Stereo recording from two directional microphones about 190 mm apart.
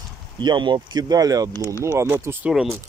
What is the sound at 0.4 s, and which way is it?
Speech, 25° right (ahead or behind).